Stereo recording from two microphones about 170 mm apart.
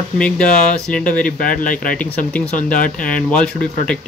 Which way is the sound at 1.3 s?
55° left (ahead or behind).